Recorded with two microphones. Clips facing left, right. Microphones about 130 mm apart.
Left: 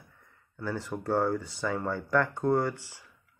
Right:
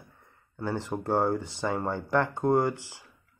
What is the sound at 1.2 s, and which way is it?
Speech, 20° right (ahead or behind).